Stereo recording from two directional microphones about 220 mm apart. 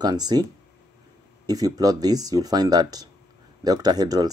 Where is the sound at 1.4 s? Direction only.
15° right (ahead or behind).